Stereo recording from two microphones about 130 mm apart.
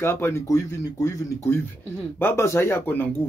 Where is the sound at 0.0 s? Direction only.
20° left (ahead or behind).